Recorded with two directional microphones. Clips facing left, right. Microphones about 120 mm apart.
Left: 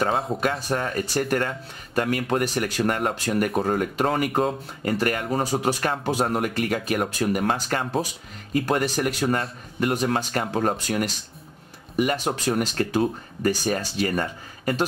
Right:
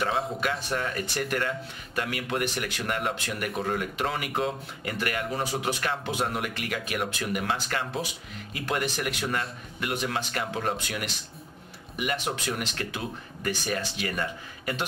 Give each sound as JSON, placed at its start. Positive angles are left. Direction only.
{"t": 0.4, "sound": "speech", "side_deg": 40}